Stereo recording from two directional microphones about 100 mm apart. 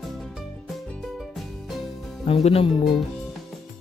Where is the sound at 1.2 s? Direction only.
Centre (ahead or behind).